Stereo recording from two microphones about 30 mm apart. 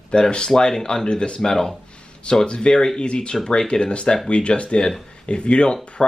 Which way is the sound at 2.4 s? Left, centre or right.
Left.